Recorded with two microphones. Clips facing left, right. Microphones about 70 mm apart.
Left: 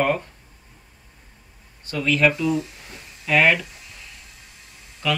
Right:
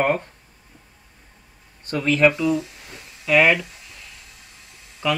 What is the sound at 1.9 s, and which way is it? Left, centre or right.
Speech, right.